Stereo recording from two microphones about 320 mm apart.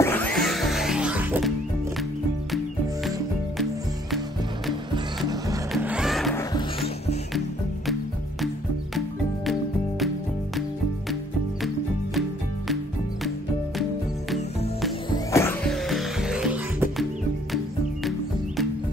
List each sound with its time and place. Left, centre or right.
0.0 s music: centre
5.7 s music: centre
6.5 s music: centre
9.5 s music: centre
11.6 s music: centre
15.0 s music: centre